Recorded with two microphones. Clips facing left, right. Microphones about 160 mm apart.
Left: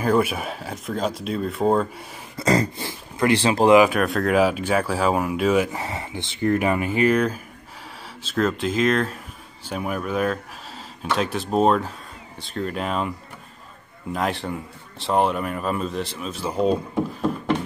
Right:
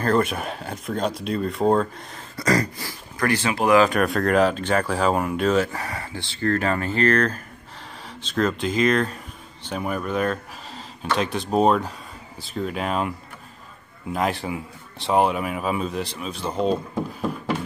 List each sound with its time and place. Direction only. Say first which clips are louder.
0.0 s speech: left 1 dB; 10° left (ahead or behind)
2.3 s speech: left 1 dB; 25° left (ahead or behind)
3.9 s speech: even; centre (ahead or behind)